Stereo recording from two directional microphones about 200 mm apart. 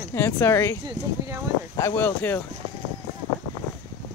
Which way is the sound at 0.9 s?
15° right (ahead or behind).